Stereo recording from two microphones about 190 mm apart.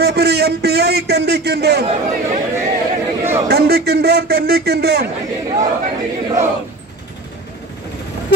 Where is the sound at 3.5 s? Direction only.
55° right (ahead or behind).